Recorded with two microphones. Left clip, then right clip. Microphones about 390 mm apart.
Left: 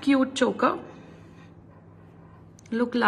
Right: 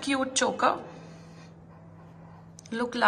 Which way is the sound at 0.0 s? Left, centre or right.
Centre.